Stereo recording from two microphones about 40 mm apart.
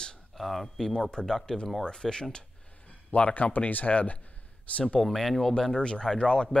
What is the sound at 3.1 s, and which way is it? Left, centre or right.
Speech, left.